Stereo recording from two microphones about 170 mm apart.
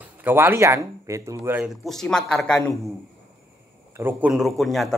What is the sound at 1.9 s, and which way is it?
Speech, 5° left (ahead or behind).